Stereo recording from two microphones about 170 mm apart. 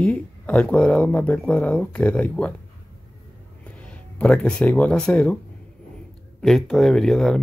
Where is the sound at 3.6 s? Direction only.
5° left (ahead or behind).